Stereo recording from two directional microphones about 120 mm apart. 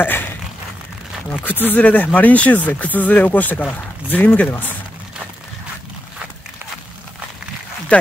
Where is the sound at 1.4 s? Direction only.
15° left (ahead or behind).